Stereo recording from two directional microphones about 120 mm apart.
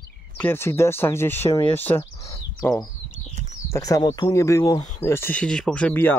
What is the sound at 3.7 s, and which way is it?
Speech, 30° left (ahead or behind).